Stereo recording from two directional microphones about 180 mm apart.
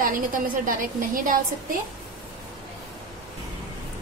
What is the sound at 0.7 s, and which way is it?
A woman's voice, 50° right (ahead or behind).